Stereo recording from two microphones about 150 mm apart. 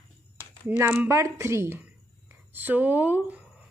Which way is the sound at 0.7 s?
10° right (ahead or behind).